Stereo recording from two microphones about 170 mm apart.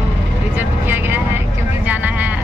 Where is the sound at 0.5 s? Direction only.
10° right (ahead or behind).